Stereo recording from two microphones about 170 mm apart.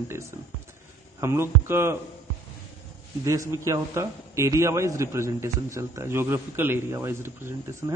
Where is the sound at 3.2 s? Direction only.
20° right (ahead or behind).